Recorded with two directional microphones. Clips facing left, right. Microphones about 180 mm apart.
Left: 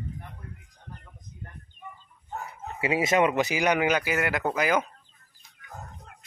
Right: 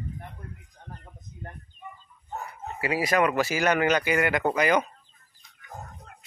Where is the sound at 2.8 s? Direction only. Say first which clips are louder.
Left 1 dB; 25° left (ahead or behind); by 4.8 s 5° left (ahead or behind).